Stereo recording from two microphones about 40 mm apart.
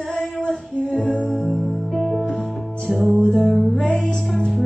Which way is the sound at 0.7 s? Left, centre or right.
Right.